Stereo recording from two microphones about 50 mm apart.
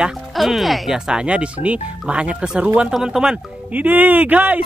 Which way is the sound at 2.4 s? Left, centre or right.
Centre.